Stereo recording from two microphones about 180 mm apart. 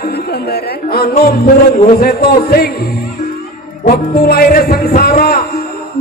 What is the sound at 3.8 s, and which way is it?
Music, 55° left (ahead or behind).